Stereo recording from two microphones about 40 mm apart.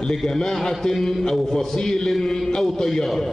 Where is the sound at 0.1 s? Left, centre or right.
Centre.